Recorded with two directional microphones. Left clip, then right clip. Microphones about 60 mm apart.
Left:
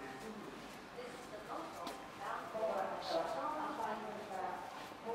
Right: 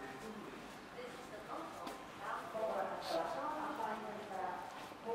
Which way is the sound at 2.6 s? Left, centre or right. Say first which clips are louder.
Left 1 dB; centre.